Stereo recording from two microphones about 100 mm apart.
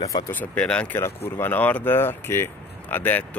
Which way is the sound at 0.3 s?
15° left (ahead or behind).